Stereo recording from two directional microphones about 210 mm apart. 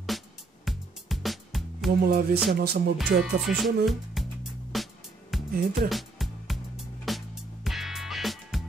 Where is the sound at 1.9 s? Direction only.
45° right (ahead or behind).